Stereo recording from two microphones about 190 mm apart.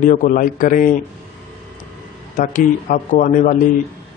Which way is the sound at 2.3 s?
45° left (ahead or behind).